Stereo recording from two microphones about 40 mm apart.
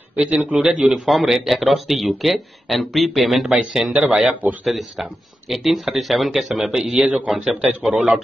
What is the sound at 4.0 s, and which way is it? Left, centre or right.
Speech, centre.